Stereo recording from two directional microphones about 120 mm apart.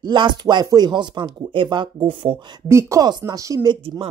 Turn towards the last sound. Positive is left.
turn(degrees=-30)  # may be behind; listen again after turning